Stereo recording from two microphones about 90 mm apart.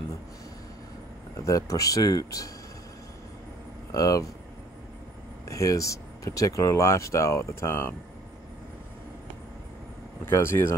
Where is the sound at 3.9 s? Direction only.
40° left (ahead or behind).